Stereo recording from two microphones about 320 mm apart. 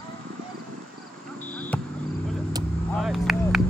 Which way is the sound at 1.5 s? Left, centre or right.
Centre.